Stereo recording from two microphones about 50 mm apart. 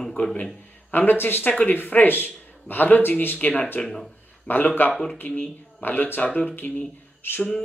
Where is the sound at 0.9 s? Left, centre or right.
Left.